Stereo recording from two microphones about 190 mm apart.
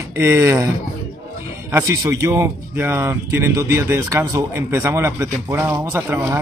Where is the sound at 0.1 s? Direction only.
15° right (ahead or behind).